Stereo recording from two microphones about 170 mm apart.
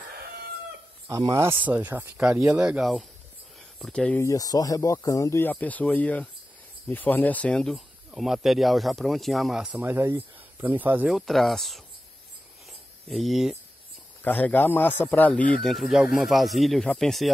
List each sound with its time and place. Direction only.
1.0 s speech: 20° right (ahead or behind); by 4.2 s 5° left (ahead or behind)
4.2 s speech: 20° left (ahead or behind); by 11.8 s centre (ahead or behind)
13.1 s speech: centre (ahead or behind)
14.2 s speech: 10° left (ahead or behind)